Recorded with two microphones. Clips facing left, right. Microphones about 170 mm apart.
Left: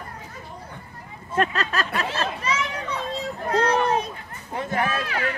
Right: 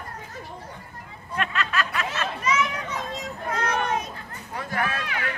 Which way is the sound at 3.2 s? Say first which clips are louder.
Left 9 dB; 35° left (ahead or behind).